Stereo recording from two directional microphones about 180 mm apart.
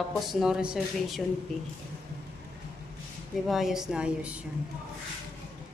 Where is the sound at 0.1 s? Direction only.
Centre (ahead or behind).